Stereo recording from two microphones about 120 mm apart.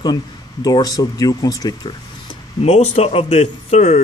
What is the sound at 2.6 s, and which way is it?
Speech, 60° left (ahead or behind).